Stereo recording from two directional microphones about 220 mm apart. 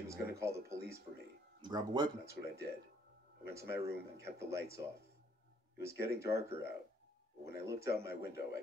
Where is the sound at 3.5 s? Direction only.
15° right (ahead or behind).